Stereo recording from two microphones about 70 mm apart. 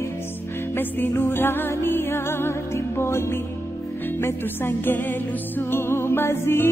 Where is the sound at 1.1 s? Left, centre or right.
Left.